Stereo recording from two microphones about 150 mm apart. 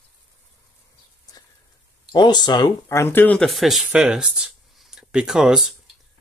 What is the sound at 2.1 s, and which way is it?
Speech, 30° left (ahead or behind).